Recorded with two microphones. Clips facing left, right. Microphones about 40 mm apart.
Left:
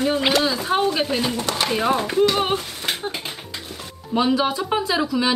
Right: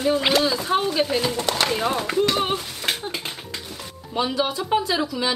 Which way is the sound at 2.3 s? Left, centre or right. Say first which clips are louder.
Left 2 dB; centre.